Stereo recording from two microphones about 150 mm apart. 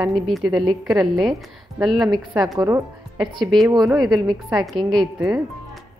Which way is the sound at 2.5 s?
20° right (ahead or behind).